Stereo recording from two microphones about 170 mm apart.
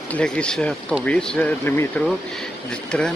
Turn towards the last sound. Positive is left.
turn(degrees=5)  # may be behind; listen again after turning